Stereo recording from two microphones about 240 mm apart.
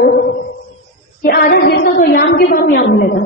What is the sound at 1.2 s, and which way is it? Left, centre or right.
A woman's voice, left.